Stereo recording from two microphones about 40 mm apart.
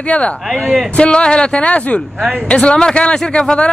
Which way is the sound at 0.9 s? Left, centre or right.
Left.